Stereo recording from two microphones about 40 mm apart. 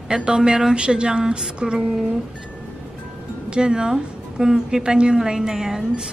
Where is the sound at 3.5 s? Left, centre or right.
Centre.